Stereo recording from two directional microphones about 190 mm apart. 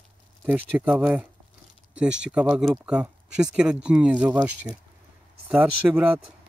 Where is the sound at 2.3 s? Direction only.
5° right (ahead or behind).